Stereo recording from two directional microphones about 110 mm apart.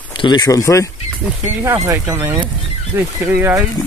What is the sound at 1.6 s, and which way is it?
Speech, 30° right (ahead or behind).